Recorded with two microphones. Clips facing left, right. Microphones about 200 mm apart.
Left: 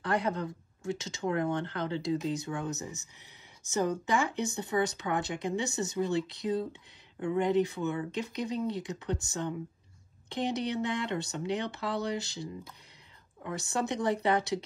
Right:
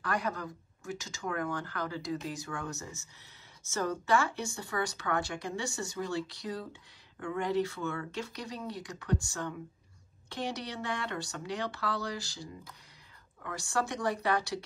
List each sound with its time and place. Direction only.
0.0 s speech: 25° left (ahead or behind)